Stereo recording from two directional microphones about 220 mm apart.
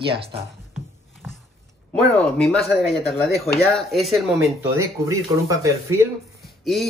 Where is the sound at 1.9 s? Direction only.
5° left (ahead or behind).